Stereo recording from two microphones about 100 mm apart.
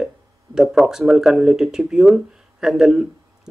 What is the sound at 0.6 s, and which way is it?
Speech, 5° right (ahead or behind).